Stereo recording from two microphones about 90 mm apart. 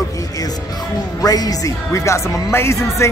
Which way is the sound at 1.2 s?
45° left (ahead or behind).